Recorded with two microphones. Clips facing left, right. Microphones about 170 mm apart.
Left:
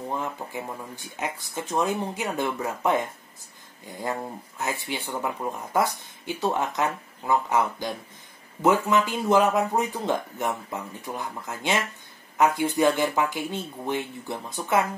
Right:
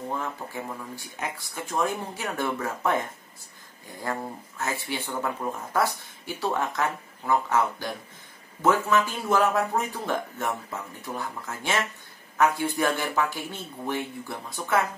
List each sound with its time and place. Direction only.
0.1 s speech: 15° left (ahead or behind)